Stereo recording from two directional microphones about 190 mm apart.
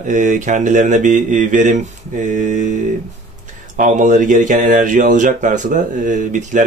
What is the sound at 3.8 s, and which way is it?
Speech, 40° right (ahead or behind).